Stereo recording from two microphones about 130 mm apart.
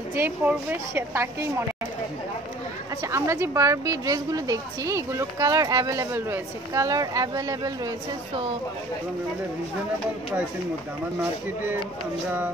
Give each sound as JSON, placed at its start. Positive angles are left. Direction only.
{"t": 0.1, "sound": "a woman's voice", "side_deg": -15}
{"t": 3.0, "sound": "a woman's voice", "side_deg": -20}